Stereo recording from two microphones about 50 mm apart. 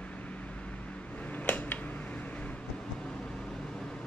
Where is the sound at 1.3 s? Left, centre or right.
Left.